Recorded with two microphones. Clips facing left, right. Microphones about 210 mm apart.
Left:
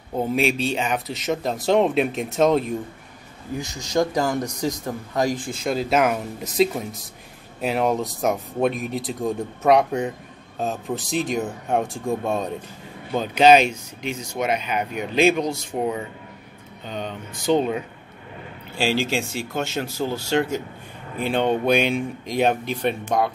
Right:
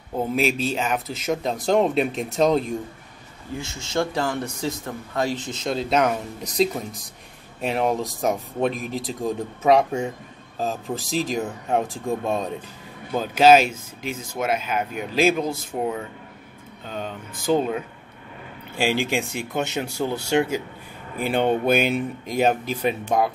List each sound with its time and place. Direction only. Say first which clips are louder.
0.4 s speech: even; centre (ahead or behind)
3.9 s speech: left 3 dB; 15° left (ahead or behind)
17.5 s speech: left 1 dB; centre (ahead or behind)
18.8 s speech: even; 15° right (ahead or behind)